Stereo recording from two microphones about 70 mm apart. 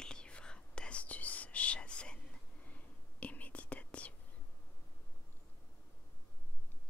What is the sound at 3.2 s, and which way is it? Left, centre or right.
Whispering, left.